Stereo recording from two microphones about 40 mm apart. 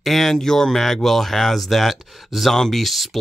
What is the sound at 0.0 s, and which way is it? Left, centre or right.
Speech, centre.